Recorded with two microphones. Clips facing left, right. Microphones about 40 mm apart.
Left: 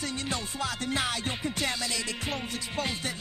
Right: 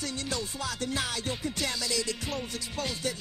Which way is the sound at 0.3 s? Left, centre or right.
Left.